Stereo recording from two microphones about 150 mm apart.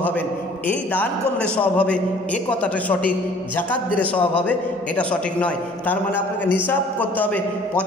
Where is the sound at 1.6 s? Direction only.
10° left (ahead or behind).